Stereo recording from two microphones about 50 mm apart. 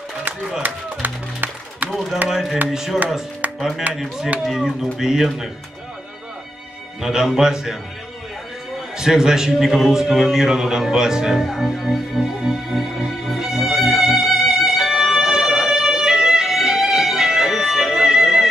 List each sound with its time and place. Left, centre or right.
0.6 s music: right
1.9 s a man's voice: centre
7.0 s a man's voice: centre
8.9 s a man's voice: centre
9.9 s music: centre